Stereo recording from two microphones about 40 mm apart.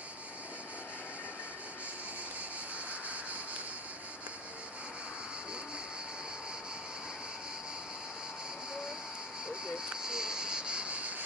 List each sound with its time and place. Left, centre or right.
10.0 s cricket: centre; by 11.2 s right